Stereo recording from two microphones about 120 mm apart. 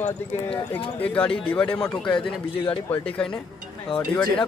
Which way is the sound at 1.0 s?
10° left (ahead or behind).